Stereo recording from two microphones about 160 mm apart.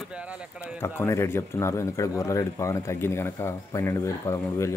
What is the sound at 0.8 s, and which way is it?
Speech, 15° left (ahead or behind).